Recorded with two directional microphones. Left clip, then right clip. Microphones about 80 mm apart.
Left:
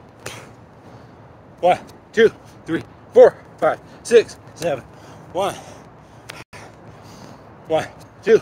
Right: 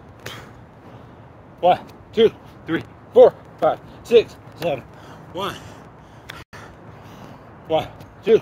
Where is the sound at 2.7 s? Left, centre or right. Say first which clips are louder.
Even; left.